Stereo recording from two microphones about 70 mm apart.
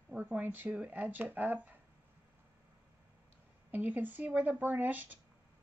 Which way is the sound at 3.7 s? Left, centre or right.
Right.